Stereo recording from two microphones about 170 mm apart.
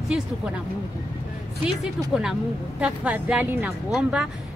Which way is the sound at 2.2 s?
5° right (ahead or behind).